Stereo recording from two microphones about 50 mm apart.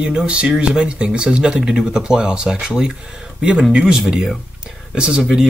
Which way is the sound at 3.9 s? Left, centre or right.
Centre.